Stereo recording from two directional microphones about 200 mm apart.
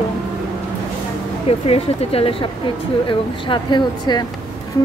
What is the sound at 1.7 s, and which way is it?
Speech, 30° left (ahead or behind).